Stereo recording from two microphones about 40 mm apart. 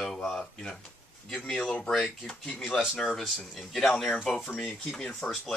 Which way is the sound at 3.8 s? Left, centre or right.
Centre.